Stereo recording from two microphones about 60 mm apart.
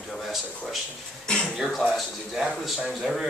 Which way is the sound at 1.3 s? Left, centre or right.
Centre.